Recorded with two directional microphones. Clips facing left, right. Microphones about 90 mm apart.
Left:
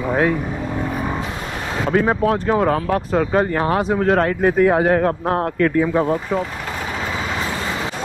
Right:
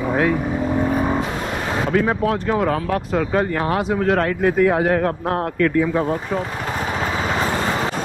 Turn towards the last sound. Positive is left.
turn(degrees=-35)  # may be behind; listen again after turning